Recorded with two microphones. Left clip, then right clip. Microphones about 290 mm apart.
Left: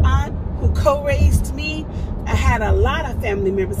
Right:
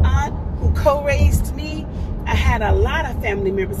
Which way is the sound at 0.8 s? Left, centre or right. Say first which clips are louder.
Right 1 dB; centre.